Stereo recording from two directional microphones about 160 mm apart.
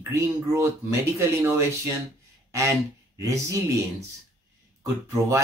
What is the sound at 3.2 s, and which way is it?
Speech, 20° right (ahead or behind).